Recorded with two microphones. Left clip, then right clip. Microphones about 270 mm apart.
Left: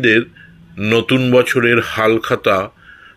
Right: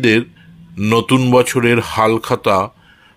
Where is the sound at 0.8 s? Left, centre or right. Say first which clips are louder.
Even; right.